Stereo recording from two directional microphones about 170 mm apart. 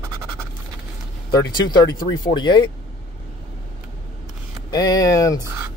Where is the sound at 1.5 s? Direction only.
25° left (ahead or behind).